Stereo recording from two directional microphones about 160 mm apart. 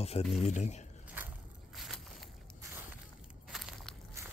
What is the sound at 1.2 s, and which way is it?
Scrape, 10° right (ahead or behind).